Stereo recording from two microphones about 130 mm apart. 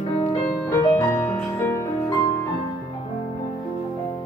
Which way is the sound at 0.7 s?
20° left (ahead or behind).